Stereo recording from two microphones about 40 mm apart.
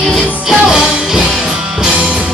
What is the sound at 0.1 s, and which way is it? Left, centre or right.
Music, centre.